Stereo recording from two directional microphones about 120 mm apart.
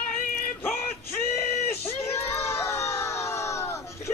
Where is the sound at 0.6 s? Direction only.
15° left (ahead or behind).